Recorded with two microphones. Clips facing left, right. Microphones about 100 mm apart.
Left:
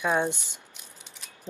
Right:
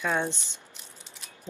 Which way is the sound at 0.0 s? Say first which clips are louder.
Left 3 dB; 10° left (ahead or behind).